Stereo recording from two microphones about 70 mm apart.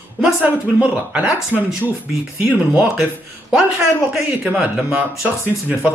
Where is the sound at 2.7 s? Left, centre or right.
Centre.